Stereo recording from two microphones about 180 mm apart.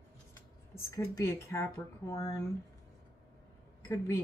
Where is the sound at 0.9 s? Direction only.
15° left (ahead or behind).